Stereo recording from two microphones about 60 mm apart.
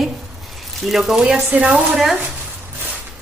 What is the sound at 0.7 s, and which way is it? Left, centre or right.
Speech, centre.